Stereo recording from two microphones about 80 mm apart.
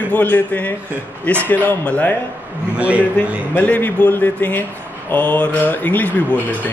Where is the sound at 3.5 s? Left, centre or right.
Left.